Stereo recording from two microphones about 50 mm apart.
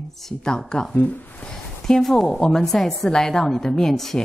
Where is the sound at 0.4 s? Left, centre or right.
Centre.